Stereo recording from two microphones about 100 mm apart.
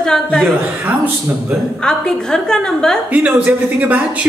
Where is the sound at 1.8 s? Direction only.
5° left (ahead or behind).